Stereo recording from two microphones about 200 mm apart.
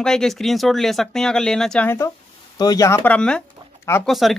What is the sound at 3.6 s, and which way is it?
Bird, 25° right (ahead or behind).